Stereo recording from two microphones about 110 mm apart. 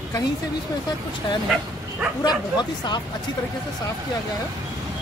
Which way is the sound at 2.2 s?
40° left (ahead or behind).